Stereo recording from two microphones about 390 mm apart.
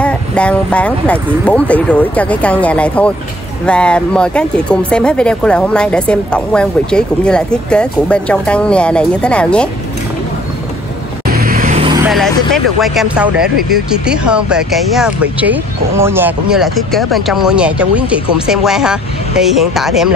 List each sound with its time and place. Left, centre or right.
0.0 s speech: centre
11.2 s vehicle: right
12.8 s speech: centre